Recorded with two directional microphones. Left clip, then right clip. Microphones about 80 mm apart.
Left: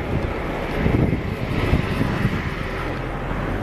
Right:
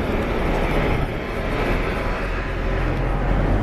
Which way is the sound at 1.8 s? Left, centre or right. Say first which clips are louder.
Right 1 dB; left.